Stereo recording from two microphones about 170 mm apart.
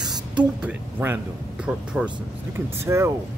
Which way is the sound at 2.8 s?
15° right (ahead or behind).